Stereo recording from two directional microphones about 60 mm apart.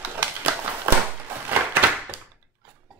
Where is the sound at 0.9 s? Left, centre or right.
Right.